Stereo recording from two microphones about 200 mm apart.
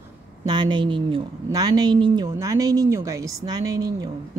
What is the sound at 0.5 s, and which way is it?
A woman's voice, 20° right (ahead or behind).